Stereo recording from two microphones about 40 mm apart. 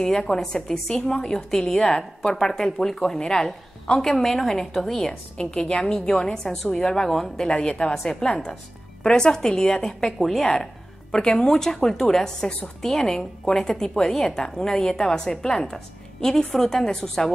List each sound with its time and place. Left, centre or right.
0.0 s a woman's voice: centre
7.4 s a woman's voice: left
10.1 s a woman's voice: centre
10.5 s music: centre
11.2 s a woman's voice: centre